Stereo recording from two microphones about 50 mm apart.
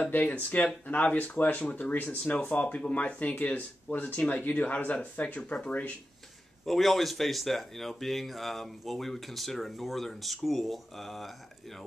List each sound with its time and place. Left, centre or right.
0.0 s speech: left
6.6 s speech: centre